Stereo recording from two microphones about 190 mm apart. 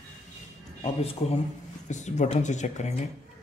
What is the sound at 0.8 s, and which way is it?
Speech, 30° left (ahead or behind).